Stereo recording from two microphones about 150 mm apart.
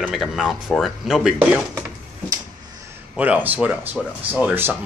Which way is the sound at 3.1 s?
10° right (ahead or behind).